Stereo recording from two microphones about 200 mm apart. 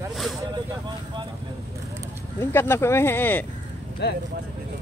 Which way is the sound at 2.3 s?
10° left (ahead or behind).